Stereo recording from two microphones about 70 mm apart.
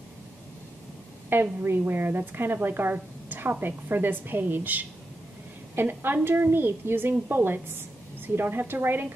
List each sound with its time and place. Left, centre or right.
1.3 s a woman's voice: right